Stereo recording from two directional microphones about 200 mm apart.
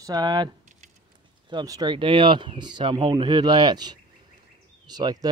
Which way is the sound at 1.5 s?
20° right (ahead or behind).